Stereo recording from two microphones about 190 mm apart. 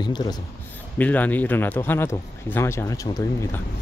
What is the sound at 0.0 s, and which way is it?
Speech, 20° left (ahead or behind).